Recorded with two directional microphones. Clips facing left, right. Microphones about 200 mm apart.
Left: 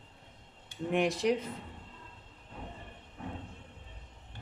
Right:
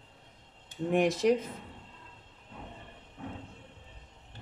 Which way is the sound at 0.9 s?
45° right (ahead or behind).